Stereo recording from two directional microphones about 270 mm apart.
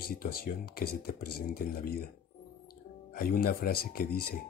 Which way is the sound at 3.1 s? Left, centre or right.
Left.